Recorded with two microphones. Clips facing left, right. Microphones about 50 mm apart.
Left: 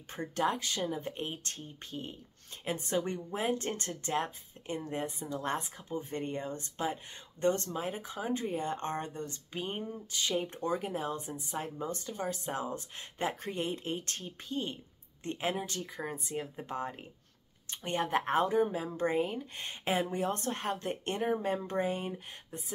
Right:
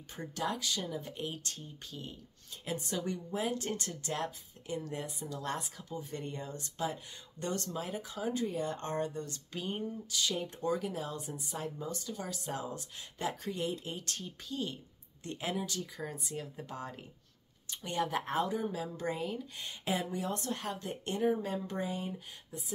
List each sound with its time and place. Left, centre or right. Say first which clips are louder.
0.1 s speech: left 5 dB; left